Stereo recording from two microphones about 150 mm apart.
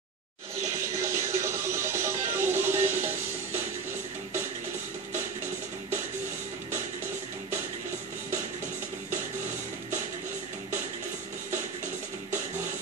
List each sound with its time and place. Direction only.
0.6 s music: 20° right (ahead or behind)